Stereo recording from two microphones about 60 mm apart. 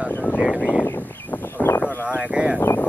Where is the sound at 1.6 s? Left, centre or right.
Left.